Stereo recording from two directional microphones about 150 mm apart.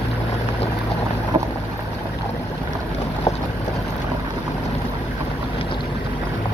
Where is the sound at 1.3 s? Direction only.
35° right (ahead or behind).